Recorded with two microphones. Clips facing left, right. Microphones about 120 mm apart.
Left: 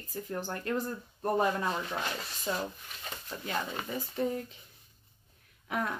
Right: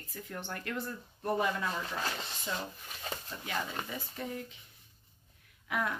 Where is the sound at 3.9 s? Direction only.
40° left (ahead or behind).